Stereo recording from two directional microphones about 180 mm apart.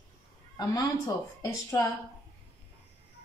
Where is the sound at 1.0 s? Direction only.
15° left (ahead or behind).